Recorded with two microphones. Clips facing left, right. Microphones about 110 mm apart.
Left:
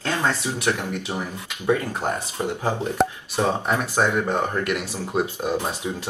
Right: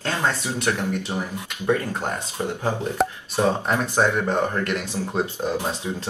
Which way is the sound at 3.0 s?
Centre (ahead or behind).